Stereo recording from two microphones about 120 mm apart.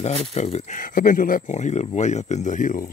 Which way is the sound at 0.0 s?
65° left (ahead or behind).